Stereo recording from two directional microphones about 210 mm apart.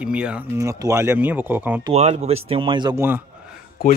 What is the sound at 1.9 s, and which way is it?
Speech, 30° right (ahead or behind).